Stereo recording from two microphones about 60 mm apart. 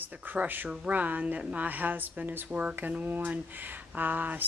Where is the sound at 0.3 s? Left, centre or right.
Right.